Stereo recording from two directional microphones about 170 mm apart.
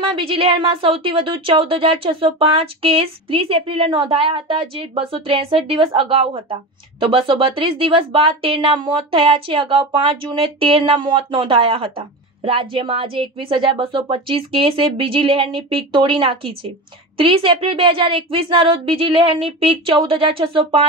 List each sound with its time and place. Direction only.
0.0 s speech: 35° right (ahead or behind)